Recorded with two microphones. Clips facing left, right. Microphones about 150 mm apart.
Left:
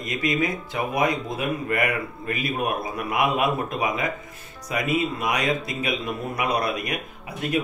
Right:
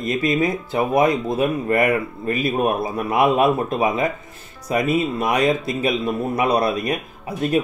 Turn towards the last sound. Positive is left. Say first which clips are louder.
# right 6 dB
turn(degrees=-30)  # may be behind; listen again after turning